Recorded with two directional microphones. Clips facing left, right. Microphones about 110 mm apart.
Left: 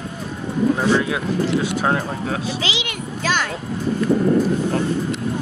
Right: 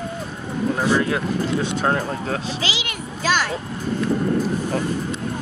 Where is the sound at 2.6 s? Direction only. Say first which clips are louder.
Left 1 dB; 40° right (ahead or behind).